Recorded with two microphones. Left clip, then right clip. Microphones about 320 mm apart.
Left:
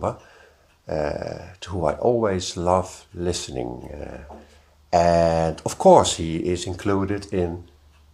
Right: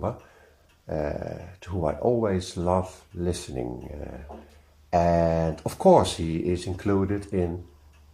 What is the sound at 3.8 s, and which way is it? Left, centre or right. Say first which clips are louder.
Speech: left 4 dB; left.